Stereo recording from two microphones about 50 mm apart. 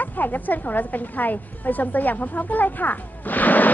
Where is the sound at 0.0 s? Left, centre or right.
Left.